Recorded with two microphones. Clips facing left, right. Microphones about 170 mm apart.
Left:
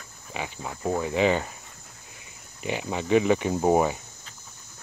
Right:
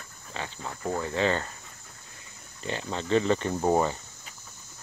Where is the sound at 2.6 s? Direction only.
15° left (ahead or behind).